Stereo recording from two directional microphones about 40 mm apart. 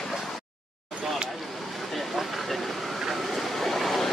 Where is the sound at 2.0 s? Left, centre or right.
Centre.